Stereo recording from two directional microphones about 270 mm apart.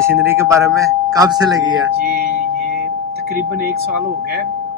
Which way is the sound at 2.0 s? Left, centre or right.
Right.